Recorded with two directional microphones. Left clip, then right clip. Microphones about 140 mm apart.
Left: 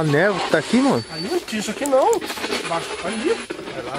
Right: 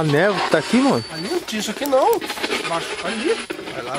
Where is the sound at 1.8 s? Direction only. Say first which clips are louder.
Even; 30° right (ahead or behind).